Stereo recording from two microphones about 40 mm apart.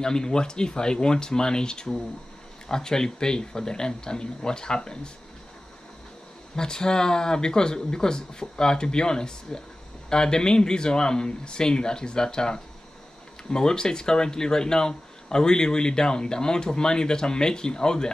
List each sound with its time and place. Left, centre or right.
0.0 s speech: centre
6.5 s speech: centre